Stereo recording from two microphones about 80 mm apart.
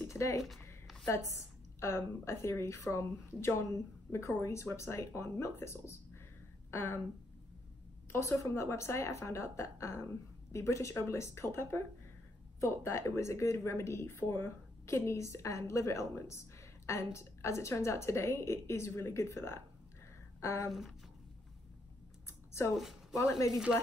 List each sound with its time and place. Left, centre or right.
0.2 s speech: left
1.0 s a woman's voice: left
8.1 s a woman's voice: left
23.1 s a woman's voice: left